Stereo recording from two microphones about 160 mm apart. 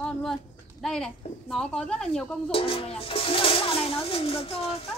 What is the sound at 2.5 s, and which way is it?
Speech, 35° left (ahead or behind).